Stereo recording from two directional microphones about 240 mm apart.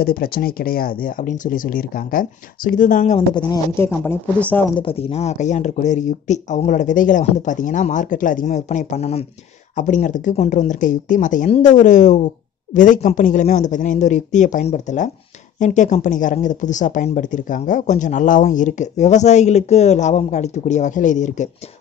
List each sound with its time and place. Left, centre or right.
0.0 s speech: left
3.3 s speech: centre
4.7 s speech: left